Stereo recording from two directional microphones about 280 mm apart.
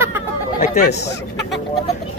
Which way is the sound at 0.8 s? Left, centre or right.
Left.